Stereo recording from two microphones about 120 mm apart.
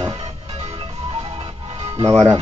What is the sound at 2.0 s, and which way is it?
Music, 30° right (ahead or behind).